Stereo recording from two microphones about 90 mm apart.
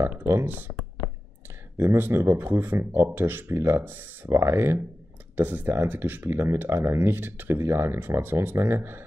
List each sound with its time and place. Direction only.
0.0 s speech: 30° right (ahead or behind)